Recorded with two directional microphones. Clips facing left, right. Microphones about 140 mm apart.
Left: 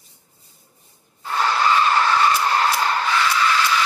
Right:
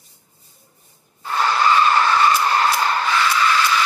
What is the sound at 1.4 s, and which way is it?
Vehicle, 50° right (ahead or behind).